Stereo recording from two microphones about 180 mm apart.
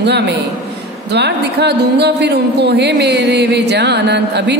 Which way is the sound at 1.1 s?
70° right (ahead or behind).